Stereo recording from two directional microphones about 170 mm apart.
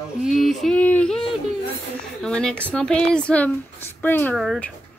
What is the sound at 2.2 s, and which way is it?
Speech, 5° left (ahead or behind).